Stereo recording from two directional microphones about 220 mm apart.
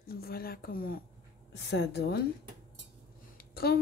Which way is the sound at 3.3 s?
45° left (ahead or behind).